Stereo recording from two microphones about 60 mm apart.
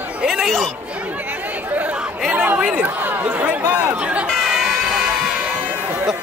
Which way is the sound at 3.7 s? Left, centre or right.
Right.